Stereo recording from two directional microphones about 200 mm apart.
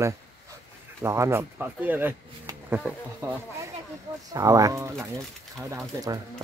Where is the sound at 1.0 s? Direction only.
15° right (ahead or behind).